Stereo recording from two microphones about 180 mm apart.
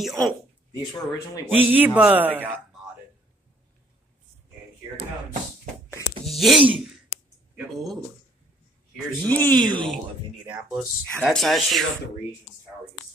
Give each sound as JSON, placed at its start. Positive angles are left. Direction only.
{"t": 0.0, "sound": "speech", "side_deg": 0}
{"t": 0.7, "sound": "speech", "side_deg": 20}
{"t": 1.4, "sound": "speech", "side_deg": -10}
{"t": 6.2, "sound": "speech", "side_deg": 0}
{"t": 9.6, "sound": "speech", "side_deg": -25}
{"t": 10.5, "sound": "speech", "side_deg": -5}